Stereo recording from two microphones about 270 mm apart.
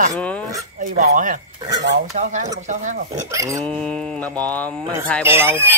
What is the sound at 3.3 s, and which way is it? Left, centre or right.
Speech, centre.